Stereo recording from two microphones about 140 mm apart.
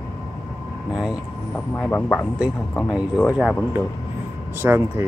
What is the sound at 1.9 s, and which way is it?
Speech, 10° left (ahead or behind).